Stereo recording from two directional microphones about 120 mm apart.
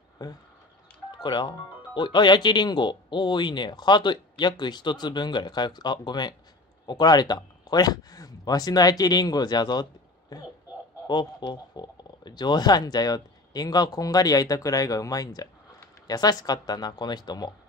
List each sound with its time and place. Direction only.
0.2 s speech: 30° left (ahead or behind)
11.1 s speech: 40° left (ahead or behind)